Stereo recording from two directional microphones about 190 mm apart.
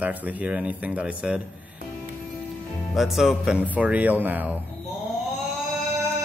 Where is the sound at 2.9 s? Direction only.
Centre (ahead or behind).